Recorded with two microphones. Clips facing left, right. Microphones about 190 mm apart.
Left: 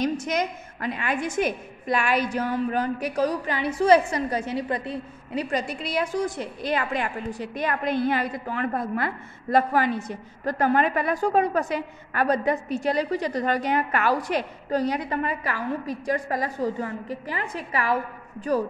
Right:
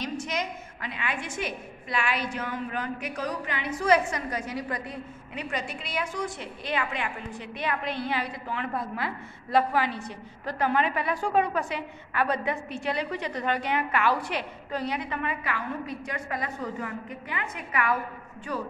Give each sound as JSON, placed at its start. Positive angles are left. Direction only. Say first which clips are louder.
{"t": 0.0, "sound": "a woman's voice", "louder": "left 6 dB", "side_deg": 45}